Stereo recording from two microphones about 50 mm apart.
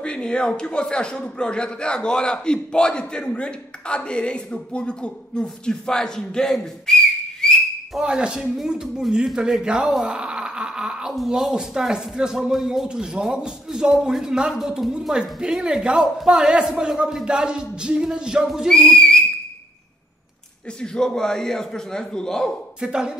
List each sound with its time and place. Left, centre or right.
0.0 s a man's voice: centre
7.4 s whistle: centre
8.0 s speech: centre
10.0 s a sound: centre
11.1 s speech: centre
12.8 s speech: centre
18.7 s whistle: centre
20.8 s a man's voice: centre
22.8 s speech: centre